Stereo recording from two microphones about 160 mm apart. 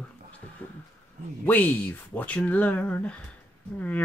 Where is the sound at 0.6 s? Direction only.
10° left (ahead or behind).